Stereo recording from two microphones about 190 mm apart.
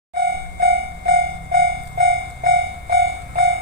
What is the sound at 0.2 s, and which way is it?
Train, 55° right (ahead or behind).